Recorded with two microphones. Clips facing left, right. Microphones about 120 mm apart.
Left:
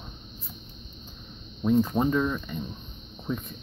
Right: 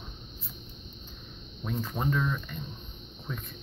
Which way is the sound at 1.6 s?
15° left (ahead or behind).